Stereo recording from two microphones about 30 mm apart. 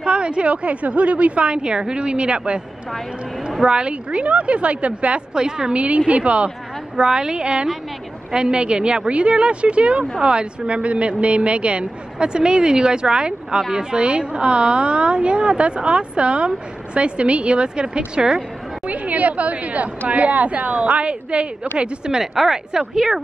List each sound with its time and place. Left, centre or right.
0.0 s a sound: right
0.5 s a woman's voice: right
3.6 s a woman's voice: right
5.3 s a woman's voice: right
5.7 s a woman's voice: right
7.0 s a woman's voice: right
13.6 s a woman's voice: right
13.9 s a woman's voice: right
18.9 s a woman's voice: right
21.7 s a woman's voice: right
22.2 s a woman's voice: centre